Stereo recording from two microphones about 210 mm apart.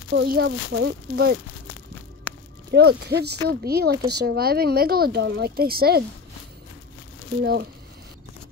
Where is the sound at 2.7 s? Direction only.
50° right (ahead or behind).